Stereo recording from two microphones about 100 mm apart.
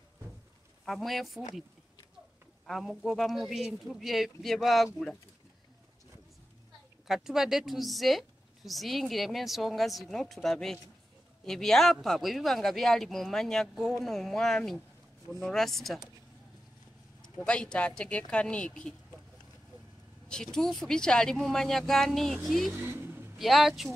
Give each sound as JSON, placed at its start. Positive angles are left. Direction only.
{"t": 0.8, "sound": "speech", "side_deg": 0}
{"t": 2.6, "sound": "speech", "side_deg": 0}
{"t": 7.1, "sound": "speech", "side_deg": -5}
{"t": 17.2, "sound": "speech", "side_deg": 10}
{"t": 20.5, "sound": "speech", "side_deg": 5}
{"t": 22.7, "sound": "vehicle", "side_deg": -20}
{"t": 23.3, "sound": "speech", "side_deg": 0}